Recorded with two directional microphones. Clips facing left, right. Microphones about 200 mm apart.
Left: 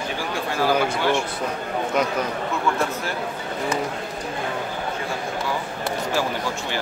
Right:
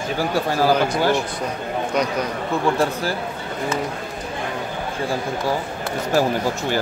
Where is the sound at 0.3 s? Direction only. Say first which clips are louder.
Right 3 dB; 40° right (ahead or behind).